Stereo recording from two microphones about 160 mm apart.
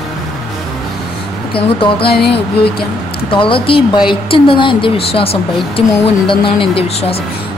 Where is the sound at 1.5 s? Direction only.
35° left (ahead or behind).